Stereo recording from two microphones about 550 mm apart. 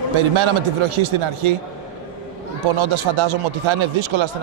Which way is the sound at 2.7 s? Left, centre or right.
Right.